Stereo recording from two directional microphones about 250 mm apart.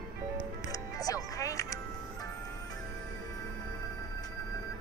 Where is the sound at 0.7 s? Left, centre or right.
Centre.